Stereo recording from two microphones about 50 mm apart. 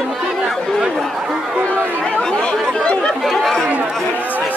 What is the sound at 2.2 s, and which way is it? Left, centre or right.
Chatter, centre.